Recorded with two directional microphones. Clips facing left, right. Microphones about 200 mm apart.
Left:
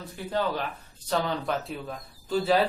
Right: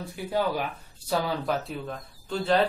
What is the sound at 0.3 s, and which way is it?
Speech, 10° right (ahead or behind).